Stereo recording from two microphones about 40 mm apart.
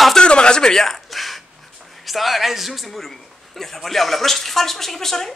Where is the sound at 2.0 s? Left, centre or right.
Centre.